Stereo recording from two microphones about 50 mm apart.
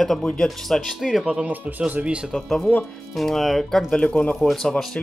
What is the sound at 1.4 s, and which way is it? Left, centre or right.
Speech, right.